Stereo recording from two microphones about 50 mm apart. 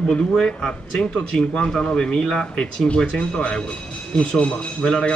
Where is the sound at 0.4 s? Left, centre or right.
Centre.